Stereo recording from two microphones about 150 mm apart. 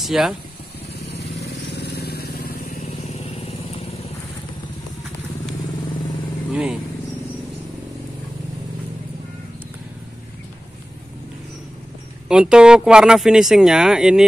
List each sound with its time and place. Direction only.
0.0 s speech: centre (ahead or behind)
1.4 s vehicle: 90° left
2.8 s vehicle: 45° left (ahead or behind)
6.5 s vehicle: 5° right (ahead or behind)
12.3 s speech: 5° right (ahead or behind)